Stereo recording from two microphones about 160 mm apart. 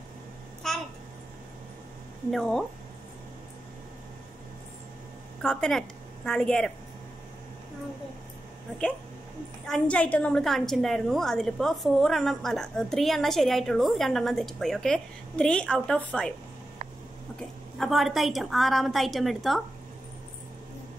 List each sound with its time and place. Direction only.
0.6 s babbling: centre (ahead or behind)
2.3 s a woman's voice: centre (ahead or behind)
5.4 s a woman's voice: 5° left (ahead or behind)
9.7 s a woman's voice: 5° left (ahead or behind)
17.4 s a woman's voice: centre (ahead or behind)